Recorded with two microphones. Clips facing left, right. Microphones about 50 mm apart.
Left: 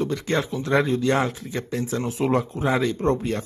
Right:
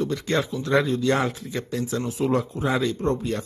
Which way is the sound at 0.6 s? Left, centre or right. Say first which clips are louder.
Left 1 dB; left.